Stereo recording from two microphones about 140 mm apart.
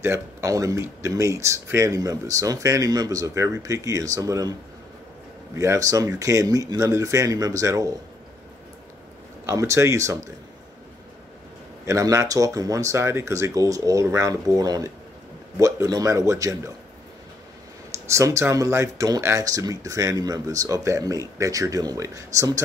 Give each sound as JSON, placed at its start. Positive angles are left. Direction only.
{"t": 0.0, "sound": "speech", "side_deg": -20}
{"t": 5.6, "sound": "speech", "side_deg": -25}
{"t": 9.5, "sound": "speech", "side_deg": -20}
{"t": 11.8, "sound": "speech", "side_deg": -25}
{"t": 17.9, "sound": "speech", "side_deg": -20}